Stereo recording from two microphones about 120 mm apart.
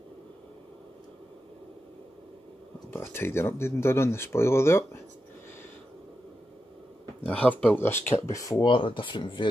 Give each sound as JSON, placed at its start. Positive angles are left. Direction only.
{"t": 2.9, "sound": "speech", "side_deg": 20}
{"t": 7.2, "sound": "speech", "side_deg": 10}
{"t": 8.6, "sound": "speech", "side_deg": 45}